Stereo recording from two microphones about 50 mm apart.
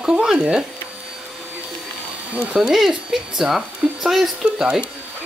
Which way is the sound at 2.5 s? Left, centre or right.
Centre.